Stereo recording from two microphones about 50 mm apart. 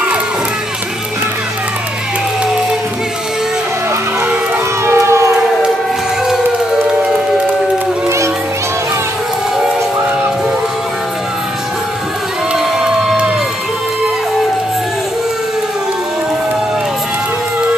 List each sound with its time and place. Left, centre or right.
4.8 s siren: right
12.5 s music: centre